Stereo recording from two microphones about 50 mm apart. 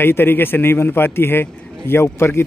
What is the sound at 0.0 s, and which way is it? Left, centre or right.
A man's voice, left.